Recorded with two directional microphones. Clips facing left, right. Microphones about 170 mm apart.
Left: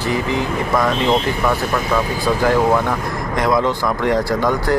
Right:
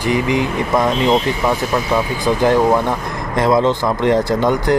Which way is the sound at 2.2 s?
20° right (ahead or behind).